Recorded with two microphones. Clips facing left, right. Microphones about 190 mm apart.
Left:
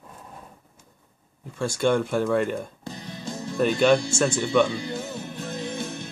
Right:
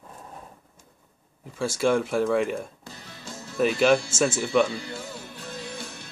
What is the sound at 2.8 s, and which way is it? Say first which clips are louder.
Music: left 7 dB; 20° left (ahead or behind).